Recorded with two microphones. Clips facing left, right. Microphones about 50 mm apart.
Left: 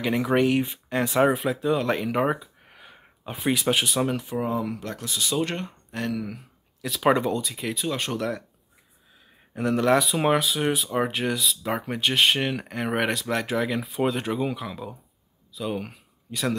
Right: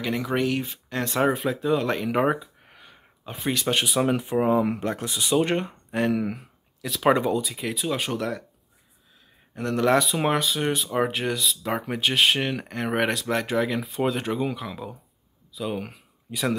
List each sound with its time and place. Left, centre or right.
0.0 s speech: centre
4.2 s speech: right
6.8 s speech: centre
9.6 s speech: centre